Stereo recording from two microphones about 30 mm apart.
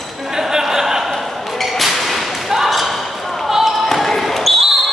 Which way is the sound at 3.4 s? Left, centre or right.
Centre.